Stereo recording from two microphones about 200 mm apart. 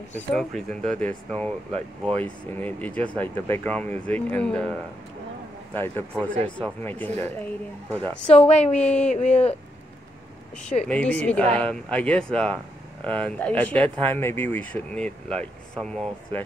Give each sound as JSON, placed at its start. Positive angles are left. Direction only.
{"t": 0.1, "sound": "speech", "side_deg": 5}
{"t": 5.8, "sound": "speech", "side_deg": 10}
{"t": 8.5, "sound": "speech", "side_deg": 30}
{"t": 8.7, "sound": "speech", "side_deg": 5}
{"t": 9.1, "sound": "speech", "side_deg": 35}
{"t": 10.9, "sound": "speech", "side_deg": 5}